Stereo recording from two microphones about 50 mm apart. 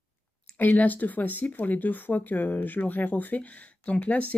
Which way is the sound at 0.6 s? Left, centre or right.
Left.